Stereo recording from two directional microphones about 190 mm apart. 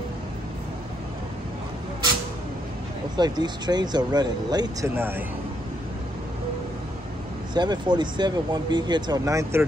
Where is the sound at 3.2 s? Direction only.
20° right (ahead or behind).